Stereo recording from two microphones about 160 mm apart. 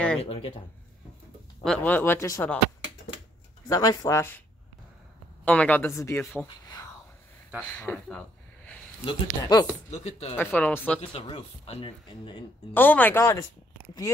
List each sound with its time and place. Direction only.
0.2 s speech: 35° left (ahead or behind)
1.6 s speech: 10° left (ahead or behind)
3.6 s speech: 20° left (ahead or behind)
5.4 s speech: 10° left (ahead or behind)
7.6 s speech: 15° left (ahead or behind)
9.0 s speech: 25° left (ahead or behind)
9.8 s speech: 45° left (ahead or behind)
10.3 s speech: 10° left (ahead or behind)
11.0 s speech: 40° left (ahead or behind)
12.7 s speech: 10° left (ahead or behind)